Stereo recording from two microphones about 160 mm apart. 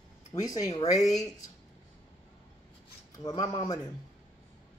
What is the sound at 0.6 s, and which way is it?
Speech, 40° left (ahead or behind).